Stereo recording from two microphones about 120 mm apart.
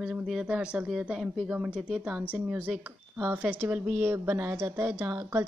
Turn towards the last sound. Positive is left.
turn(degrees=-15)  # may be behind; listen again after turning